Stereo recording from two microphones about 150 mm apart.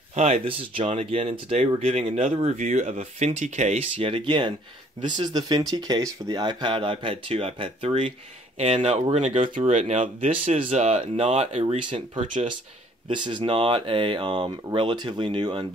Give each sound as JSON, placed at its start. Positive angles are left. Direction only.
{"t": 0.1, "sound": "speech", "side_deg": -45}
{"t": 9.5, "sound": "speech", "side_deg": -55}
{"t": 11.6, "sound": "speech", "side_deg": -35}